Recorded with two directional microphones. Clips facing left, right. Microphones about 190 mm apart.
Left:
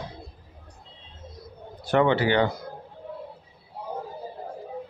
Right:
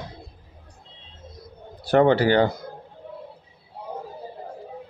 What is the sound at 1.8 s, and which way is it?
Speech, 40° right (ahead or behind).